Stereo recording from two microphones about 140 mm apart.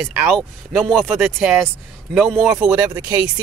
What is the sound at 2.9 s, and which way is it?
Speech, 20° right (ahead or behind).